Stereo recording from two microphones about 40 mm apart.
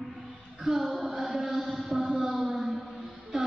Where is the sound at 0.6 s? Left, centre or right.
Centre.